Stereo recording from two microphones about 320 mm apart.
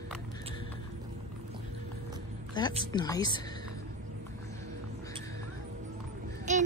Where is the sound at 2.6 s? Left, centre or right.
Centre.